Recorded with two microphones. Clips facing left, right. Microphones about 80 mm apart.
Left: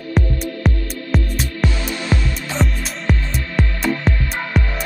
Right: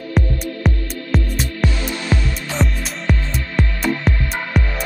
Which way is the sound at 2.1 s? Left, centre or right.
Left.